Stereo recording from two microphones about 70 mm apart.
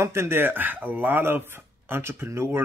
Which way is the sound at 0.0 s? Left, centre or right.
Right.